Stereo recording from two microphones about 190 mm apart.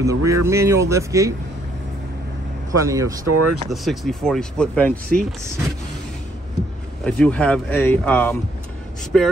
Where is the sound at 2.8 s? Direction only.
20° right (ahead or behind).